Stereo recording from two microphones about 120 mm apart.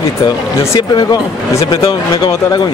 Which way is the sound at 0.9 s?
35° left (ahead or behind).